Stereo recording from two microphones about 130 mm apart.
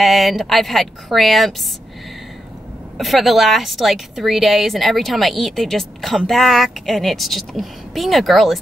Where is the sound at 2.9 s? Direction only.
Centre (ahead or behind).